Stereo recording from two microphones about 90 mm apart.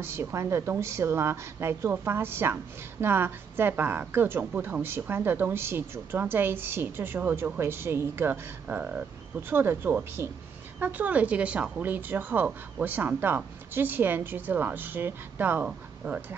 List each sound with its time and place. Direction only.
0.0 s a woman's voice: 30° right (ahead or behind)